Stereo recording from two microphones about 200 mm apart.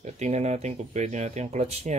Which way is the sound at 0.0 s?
35° right (ahead or behind).